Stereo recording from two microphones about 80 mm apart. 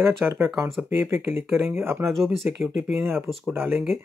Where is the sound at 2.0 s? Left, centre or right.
Centre.